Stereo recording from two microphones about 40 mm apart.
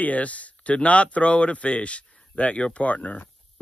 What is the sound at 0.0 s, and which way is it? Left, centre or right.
Speech, left.